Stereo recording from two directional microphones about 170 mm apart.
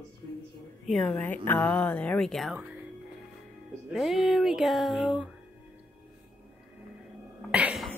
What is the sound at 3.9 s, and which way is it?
Speech, centre (ahead or behind).